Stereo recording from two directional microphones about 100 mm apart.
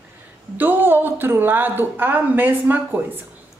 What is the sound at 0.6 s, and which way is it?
Speech, 20° right (ahead or behind).